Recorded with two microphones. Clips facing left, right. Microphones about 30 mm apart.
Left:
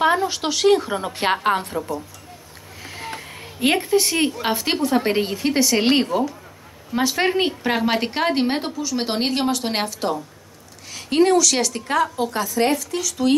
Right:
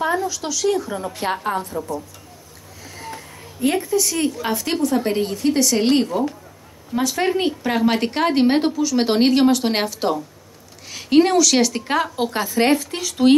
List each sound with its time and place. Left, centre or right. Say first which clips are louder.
0.0 s a woman's voice: left 3 dB; left
2.8 s a sound: left 2 dB; left
4.6 s a woman's voice: even; left
5.8 s a woman's voice: even; left
7.3 s a woman's voice: even; left
7.7 s a woman's voice: right 2 dB; centre
11.7 s speech: even; centre